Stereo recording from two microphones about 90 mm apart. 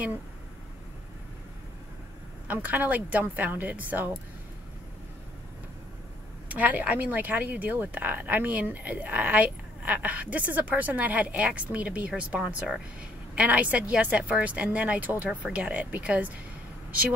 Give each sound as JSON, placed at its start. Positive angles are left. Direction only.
{"t": 2.4, "sound": "speech", "side_deg": -20}
{"t": 6.5, "sound": "speech", "side_deg": -15}